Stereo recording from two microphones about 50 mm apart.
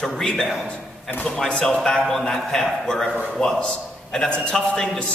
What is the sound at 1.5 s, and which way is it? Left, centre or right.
A man's voice, centre.